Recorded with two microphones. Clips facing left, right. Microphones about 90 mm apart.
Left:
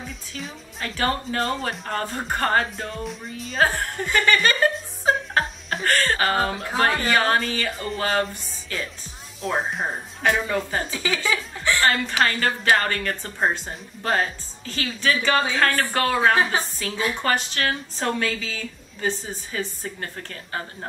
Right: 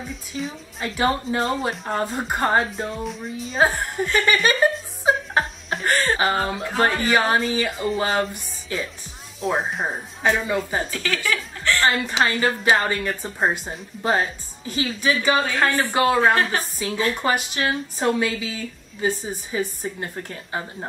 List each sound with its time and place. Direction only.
0.0 s a woman's voice: centre (ahead or behind)
0.9 s speech: 15° right (ahead or behind)
1.4 s speech: 5° right (ahead or behind)
4.0 s chuckle: 5° right (ahead or behind)
5.4 s laughter: centre (ahead or behind)
5.9 s speech: 15° right (ahead or behind)
9.4 s speech: centre (ahead or behind)
10.9 s speech: 5° left (ahead or behind)
11.8 s speech: 15° right (ahead or behind)
14.6 s a woman's voice: 15° right (ahead or behind)